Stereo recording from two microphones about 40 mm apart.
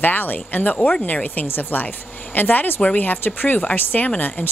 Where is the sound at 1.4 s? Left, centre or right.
Left.